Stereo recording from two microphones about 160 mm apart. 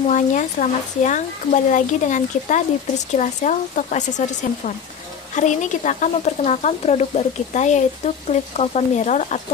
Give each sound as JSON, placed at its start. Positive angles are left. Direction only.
{"t": 0.0, "sound": "speech", "side_deg": 55}